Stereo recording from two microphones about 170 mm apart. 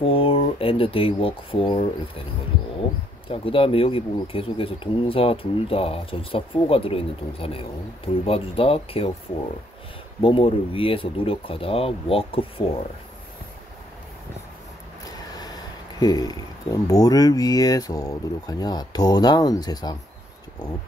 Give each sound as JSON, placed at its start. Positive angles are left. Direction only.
{"t": 0.0, "sound": "speech", "side_deg": 35}
{"t": 3.3, "sound": "speech", "side_deg": 35}
{"t": 10.2, "sound": "speech", "side_deg": 30}
{"t": 15.3, "sound": "speech", "side_deg": 25}